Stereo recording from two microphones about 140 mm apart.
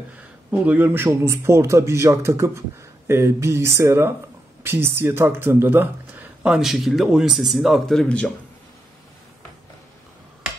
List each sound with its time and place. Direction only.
0.5 s a man's voice: 15° right (ahead or behind); by 8.3 s 5° left (ahead or behind)